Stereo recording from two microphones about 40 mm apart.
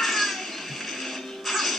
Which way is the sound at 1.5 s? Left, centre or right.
Centre.